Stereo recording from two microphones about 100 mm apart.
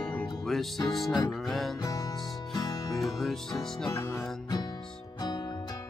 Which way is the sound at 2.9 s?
Centre (ahead or behind).